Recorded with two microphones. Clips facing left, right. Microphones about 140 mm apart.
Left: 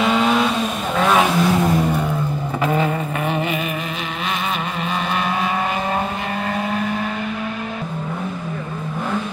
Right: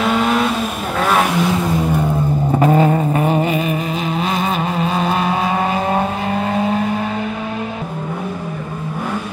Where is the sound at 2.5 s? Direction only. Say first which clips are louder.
Right 7 dB; 40° right (ahead or behind).